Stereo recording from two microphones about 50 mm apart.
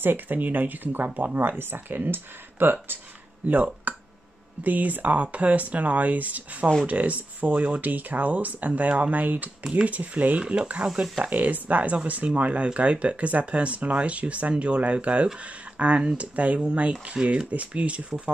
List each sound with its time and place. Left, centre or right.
0.0 s speech: right
3.9 s a sound: right
4.6 s speech: right
10.4 s speech: centre
11.2 s speech: right